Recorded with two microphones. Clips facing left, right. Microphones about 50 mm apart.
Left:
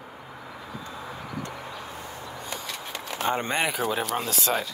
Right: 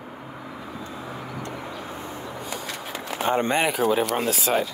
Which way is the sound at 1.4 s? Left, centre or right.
Right.